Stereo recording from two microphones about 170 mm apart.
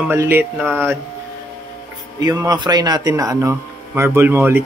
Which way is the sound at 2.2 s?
20° right (ahead or behind).